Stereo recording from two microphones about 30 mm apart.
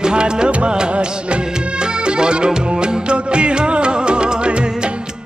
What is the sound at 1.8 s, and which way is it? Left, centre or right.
Music, right.